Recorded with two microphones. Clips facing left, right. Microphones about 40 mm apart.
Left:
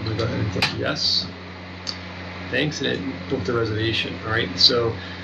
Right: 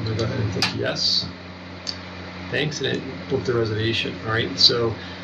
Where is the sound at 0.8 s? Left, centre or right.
Centre.